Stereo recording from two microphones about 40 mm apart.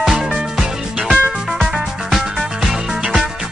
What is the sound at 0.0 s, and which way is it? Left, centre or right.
Music, centre.